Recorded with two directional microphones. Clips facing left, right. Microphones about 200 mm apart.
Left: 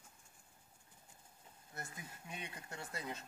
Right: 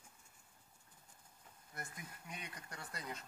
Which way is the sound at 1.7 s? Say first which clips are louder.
Left 1 dB; 25° left (ahead or behind).